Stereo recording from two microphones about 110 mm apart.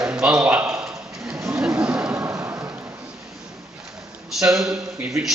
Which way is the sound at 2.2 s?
25° right (ahead or behind).